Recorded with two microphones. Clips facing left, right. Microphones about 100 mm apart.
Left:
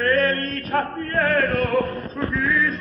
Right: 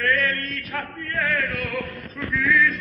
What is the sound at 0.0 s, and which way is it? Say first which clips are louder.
Chant: left 4 dB; 40° left (ahead or behind).